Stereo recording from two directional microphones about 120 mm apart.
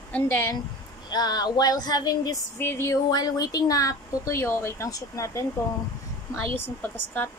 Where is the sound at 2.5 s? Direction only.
20° left (ahead or behind).